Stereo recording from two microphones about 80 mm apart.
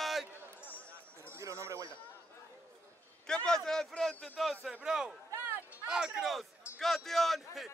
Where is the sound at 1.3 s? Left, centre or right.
Right.